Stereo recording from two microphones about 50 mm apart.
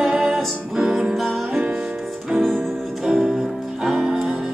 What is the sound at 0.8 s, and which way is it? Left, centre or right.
Music, centre.